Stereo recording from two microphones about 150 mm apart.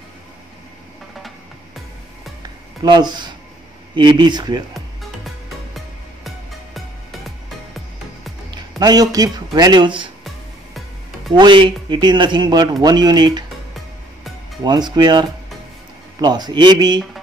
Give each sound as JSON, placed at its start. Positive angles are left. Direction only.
{"t": 2.4, "sound": "a sound", "side_deg": -30}
{"t": 3.9, "sound": "speech", "side_deg": -30}
{"t": 6.2, "sound": "music", "side_deg": 0}
{"t": 8.5, "sound": "speech", "side_deg": -25}
{"t": 11.3, "sound": "speech", "side_deg": -30}
{"t": 14.6, "sound": "speech", "side_deg": -30}